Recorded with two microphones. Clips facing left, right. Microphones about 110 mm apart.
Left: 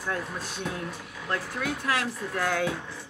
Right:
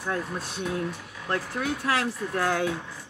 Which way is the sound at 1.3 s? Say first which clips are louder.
Right 2 dB; 30° right (ahead or behind).